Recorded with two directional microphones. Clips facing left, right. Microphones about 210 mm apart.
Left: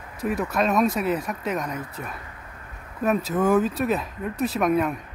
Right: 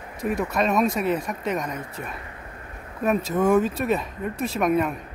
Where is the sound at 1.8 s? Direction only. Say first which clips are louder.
Even; 25° right (ahead or behind).